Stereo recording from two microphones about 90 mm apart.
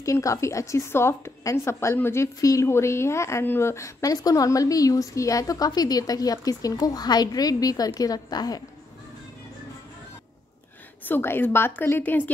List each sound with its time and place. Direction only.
0.0 s a woman's voice: 35° left (ahead or behind)
11.1 s a woman's voice: 25° left (ahead or behind)